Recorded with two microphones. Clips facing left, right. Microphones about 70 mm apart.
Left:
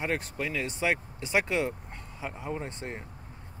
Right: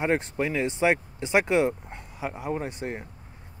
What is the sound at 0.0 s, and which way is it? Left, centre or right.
Speech, right.